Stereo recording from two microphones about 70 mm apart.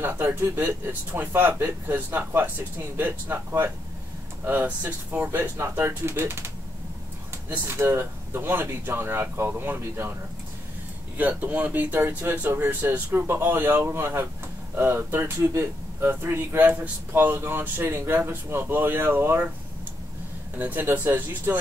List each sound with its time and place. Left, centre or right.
0.0 s speech: right
11.1 s speech: right
20.5 s speech: right